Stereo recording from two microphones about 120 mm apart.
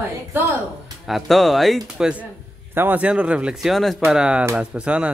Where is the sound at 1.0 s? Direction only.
Centre (ahead or behind).